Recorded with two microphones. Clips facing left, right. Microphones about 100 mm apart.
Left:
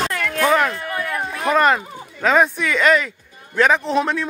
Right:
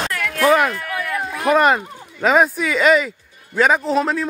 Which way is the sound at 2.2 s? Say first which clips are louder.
Right 1 dB; 5° right (ahead or behind).